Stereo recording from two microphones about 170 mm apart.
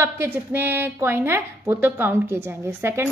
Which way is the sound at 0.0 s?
15° right (ahead or behind).